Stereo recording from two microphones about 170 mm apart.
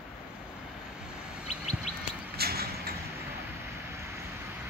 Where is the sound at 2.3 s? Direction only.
65° right (ahead or behind).